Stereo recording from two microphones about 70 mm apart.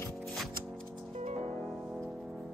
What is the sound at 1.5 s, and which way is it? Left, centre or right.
Music, centre.